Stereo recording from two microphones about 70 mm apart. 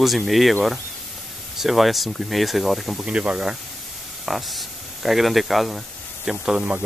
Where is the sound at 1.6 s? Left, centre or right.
Centre.